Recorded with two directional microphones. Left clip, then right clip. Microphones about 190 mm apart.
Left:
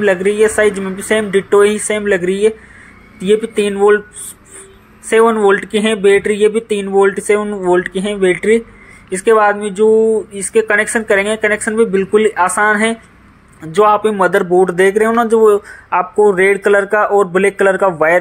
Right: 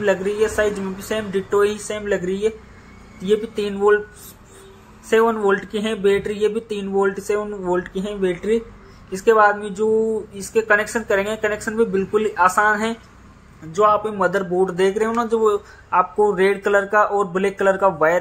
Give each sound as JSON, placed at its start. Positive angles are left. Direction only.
{"t": 0.0, "sound": "speech", "side_deg": 25}
{"t": 5.1, "sound": "speech", "side_deg": 25}
{"t": 13.7, "sound": "speech", "side_deg": 40}